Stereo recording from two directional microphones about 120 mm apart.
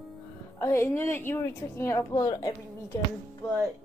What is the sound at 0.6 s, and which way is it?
A woman's voice, 20° left (ahead or behind).